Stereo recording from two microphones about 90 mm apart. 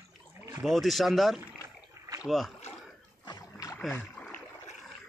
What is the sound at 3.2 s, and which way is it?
Boat, 45° left (ahead or behind).